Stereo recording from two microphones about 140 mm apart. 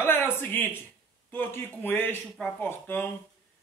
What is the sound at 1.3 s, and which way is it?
Speech, 15° left (ahead or behind).